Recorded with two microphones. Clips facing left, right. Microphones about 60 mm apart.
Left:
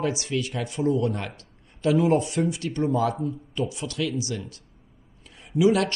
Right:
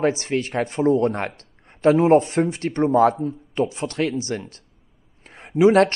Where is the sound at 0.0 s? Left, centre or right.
Right.